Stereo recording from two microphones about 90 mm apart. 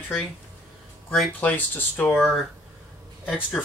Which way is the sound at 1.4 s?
20° left (ahead or behind).